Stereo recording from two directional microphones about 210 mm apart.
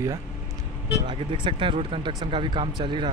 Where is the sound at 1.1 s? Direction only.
25° right (ahead or behind).